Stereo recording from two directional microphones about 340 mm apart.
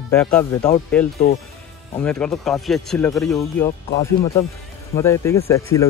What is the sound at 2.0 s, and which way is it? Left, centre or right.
Speech, centre.